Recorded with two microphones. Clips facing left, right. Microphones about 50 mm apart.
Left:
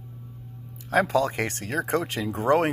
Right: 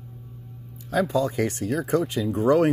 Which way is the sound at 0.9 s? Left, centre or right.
Left.